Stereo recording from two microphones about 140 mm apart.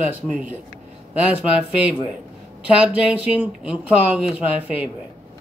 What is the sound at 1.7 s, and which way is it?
Speech, 10° right (ahead or behind).